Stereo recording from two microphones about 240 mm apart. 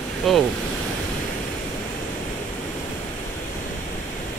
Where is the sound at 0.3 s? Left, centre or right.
Centre.